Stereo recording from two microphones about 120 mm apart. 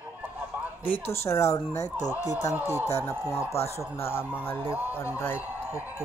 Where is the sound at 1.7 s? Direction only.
70° left (ahead or behind).